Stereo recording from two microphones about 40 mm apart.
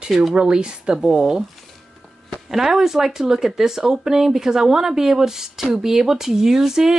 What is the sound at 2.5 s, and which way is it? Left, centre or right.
Speech, centre.